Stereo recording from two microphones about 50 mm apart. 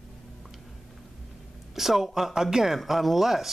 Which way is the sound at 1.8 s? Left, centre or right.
Centre.